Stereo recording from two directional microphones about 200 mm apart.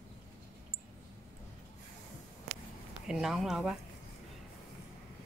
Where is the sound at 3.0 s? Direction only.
Centre (ahead or behind).